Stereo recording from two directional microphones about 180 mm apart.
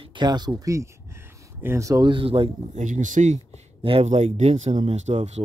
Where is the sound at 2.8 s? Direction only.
45° right (ahead or behind).